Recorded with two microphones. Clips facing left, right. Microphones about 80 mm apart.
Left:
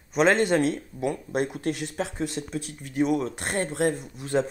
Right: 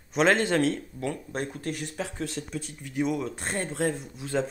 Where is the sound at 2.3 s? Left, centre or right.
Left.